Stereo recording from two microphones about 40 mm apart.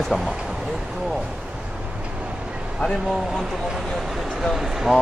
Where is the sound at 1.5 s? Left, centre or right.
Centre.